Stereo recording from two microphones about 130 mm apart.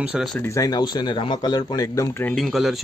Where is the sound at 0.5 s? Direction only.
30° left (ahead or behind).